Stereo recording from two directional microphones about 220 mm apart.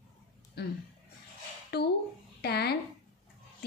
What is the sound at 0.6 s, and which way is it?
A woman's voice, 45° left (ahead or behind).